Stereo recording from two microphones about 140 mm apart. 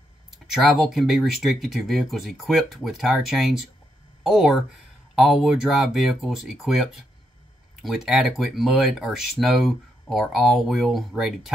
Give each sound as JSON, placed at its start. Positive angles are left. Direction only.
{"t": 0.5, "sound": "speech", "side_deg": 0}